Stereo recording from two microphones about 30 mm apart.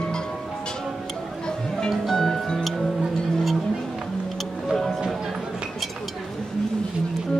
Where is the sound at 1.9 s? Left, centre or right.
Centre.